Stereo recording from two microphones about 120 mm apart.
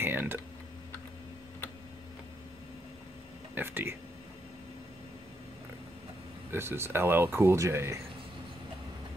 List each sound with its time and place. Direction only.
0.0 s tick-tock: 15° right (ahead or behind)
3.5 s a sound: 20° right (ahead or behind)
6.5 s speech: 20° right (ahead or behind)